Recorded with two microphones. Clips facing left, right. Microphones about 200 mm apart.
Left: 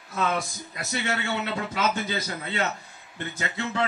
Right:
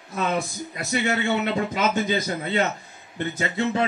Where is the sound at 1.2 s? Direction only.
20° right (ahead or behind).